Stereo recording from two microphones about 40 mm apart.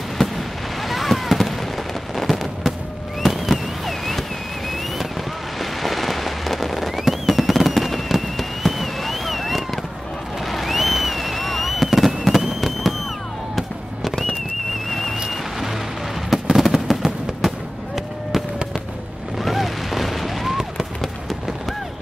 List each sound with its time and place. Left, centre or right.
0.2 s fireworks: centre
0.8 s fireworks: centre
5.6 s fireworks: centre
14.9 s a sound: centre
15.1 s rain: centre
16.3 s fireworks: centre
19.3 s a sound: centre
21.0 s fireworks: centre